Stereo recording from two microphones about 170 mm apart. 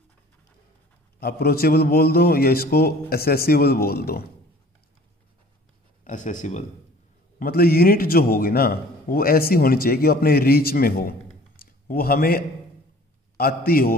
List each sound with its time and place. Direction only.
1.2 s a man's voice: 65° left (ahead or behind)
6.0 s speech: 50° left (ahead or behind)
7.3 s a man's voice: 60° left (ahead or behind)